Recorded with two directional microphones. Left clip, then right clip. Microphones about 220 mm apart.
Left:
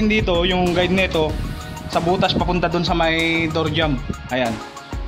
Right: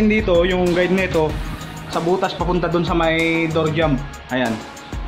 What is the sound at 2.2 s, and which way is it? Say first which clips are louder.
Speech: left 1 dB; 35° left (ahead or behind).